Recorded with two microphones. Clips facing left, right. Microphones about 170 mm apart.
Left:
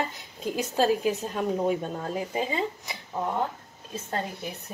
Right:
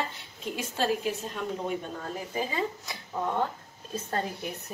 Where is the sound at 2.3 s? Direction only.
20° left (ahead or behind).